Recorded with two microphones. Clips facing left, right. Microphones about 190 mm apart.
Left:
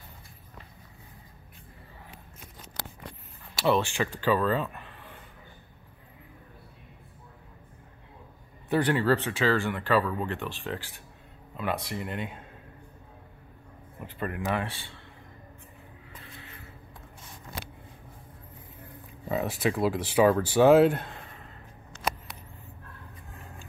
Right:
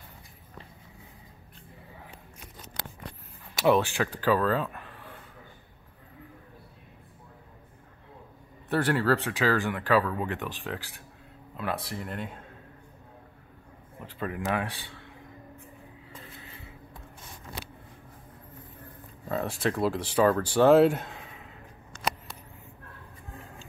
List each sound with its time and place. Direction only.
3.6 s speech: 10° right (ahead or behind)
8.6 s speech: 5° right (ahead or behind)
14.1 s speech: centre (ahead or behind)
19.2 s speech: 5° left (ahead or behind)